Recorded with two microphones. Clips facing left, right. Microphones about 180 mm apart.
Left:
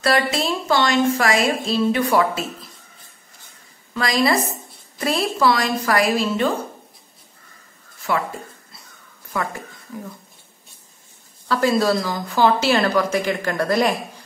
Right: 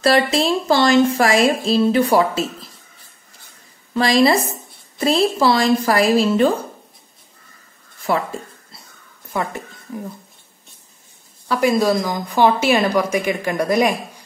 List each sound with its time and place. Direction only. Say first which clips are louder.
0.0 s a woman's voice: right 4 dB; 30° right (ahead or behind)
3.9 s a woman's voice: right 5 dB; 30° right (ahead or behind)
8.1 s a woman's voice: right 3 dB; 35° right (ahead or behind)
9.3 s speech: right 2 dB; 25° right (ahead or behind)
11.4 s a woman's voice: right 2 dB; 15° right (ahead or behind)